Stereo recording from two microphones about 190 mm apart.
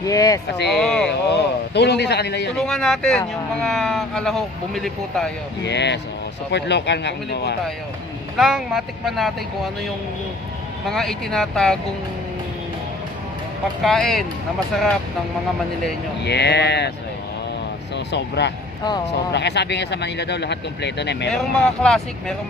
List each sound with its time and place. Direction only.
0.0 s speech: 20° left (ahead or behind)
0.7 s speech: centre (ahead or behind)
1.3 s speech: 60° left (ahead or behind)
2.5 s speech: centre (ahead or behind)
5.6 s speech: 65° left (ahead or behind)
8.4 s speech: centre (ahead or behind)
10.9 s speech: centre (ahead or behind)
13.8 s speech: centre (ahead or behind)
16.2 s speech: 60° left (ahead or behind)
17.9 s speech: 65° left (ahead or behind)
21.3 s speech: 5° left (ahead or behind)